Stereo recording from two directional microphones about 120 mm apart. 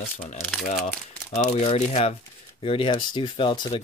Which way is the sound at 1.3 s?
75° left (ahead or behind).